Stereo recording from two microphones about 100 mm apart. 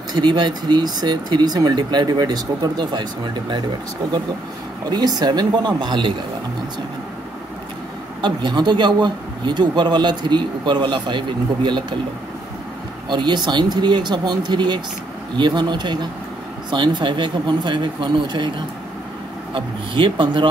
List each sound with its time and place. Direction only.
0.1 s speech: 50° right (ahead or behind)
4.8 s speech: 45° right (ahead or behind)
8.2 s speech: 50° right (ahead or behind)
13.1 s speech: 50° right (ahead or behind)
19.5 s speech: 55° right (ahead or behind)